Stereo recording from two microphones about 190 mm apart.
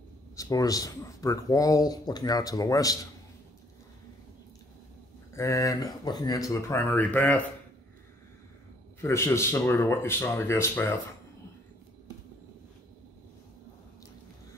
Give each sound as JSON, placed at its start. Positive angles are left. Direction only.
{"t": 0.4, "sound": "speech", "side_deg": 20}
{"t": 5.3, "sound": "speech", "side_deg": 15}
{"t": 9.0, "sound": "speech", "side_deg": 15}